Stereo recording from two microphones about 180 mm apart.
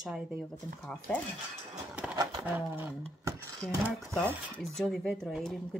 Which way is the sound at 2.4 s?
10° right (ahead or behind).